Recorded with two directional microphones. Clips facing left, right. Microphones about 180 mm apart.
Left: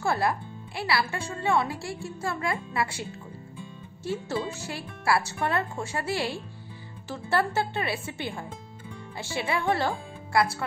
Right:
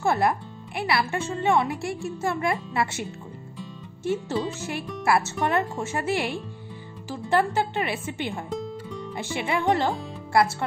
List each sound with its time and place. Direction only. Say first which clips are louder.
0.0 s speech: right 4 dB; 20° right (ahead or behind)
4.0 s speech: right 4 dB; 20° right (ahead or behind)